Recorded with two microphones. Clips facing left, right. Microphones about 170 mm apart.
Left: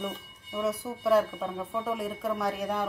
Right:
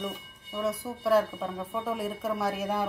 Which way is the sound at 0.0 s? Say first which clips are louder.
Even; centre (ahead or behind).